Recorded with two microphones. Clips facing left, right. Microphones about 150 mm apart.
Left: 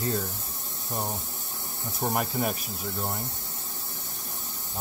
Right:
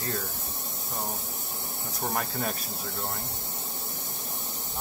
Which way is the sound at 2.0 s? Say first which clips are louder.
Left 4 dB; 15° left (ahead or behind).